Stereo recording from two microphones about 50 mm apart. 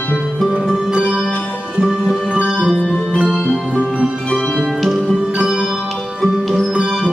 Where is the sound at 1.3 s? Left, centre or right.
Left.